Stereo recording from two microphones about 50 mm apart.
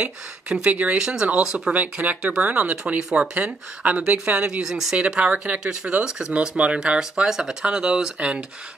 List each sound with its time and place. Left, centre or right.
0.0 s speech: right
0.9 s speech: centre
1.7 s speech: right
3.3 s speech: right
4.5 s speech: centre
4.9 s speech: right
6.3 s speech: right